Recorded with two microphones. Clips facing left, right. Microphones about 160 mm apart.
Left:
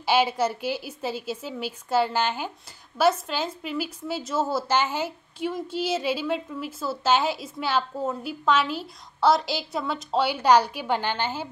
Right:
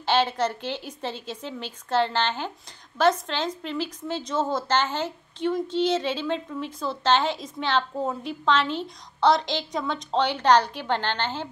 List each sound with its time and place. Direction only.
0.0 s a woman's voice: 10° left (ahead or behind)